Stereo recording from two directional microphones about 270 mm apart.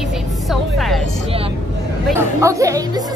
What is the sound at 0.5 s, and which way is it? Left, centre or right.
Speech, centre.